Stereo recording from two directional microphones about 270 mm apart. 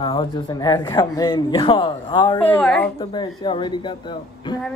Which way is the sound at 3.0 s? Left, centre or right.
Centre.